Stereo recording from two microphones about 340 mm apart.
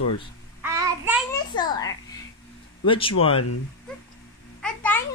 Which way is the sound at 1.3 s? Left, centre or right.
Centre.